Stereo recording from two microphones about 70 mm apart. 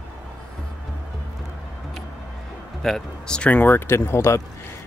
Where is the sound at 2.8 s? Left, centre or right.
Centre.